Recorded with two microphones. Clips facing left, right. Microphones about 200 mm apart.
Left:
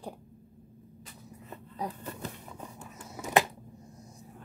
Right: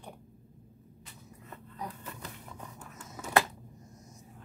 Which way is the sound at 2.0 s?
30° left (ahead or behind).